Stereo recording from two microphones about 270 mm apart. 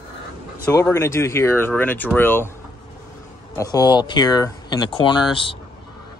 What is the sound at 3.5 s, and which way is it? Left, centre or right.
Speech, centre.